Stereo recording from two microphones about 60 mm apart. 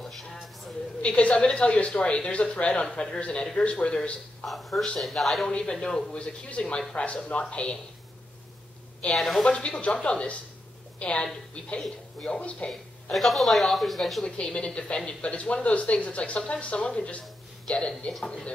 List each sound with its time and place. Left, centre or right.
0.3 s a sound: centre
1.0 s speech: left
4.5 s speech: centre
5.5 s speech: centre
9.1 s speech: centre
9.5 s a woman's voice: centre
11.8 s speech: centre
12.4 s speech: centre
13.1 s speech: centre
14.2 s speech: centre